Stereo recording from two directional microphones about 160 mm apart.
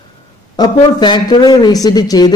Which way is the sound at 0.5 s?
25° left (ahead or behind).